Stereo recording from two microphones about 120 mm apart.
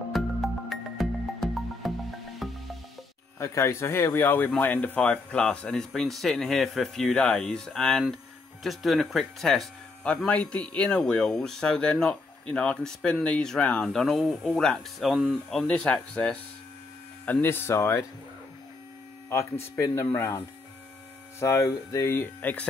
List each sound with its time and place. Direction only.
0.1 s music: centre (ahead or behind)
3.3 s speech: 25° left (ahead or behind); by 16.3 s 5° left (ahead or behind)
17.3 s speech: 20° left (ahead or behind)
19.2 s speech: 20° left (ahead or behind)